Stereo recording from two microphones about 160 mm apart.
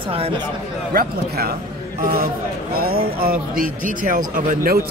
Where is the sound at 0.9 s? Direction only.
75° right (ahead or behind).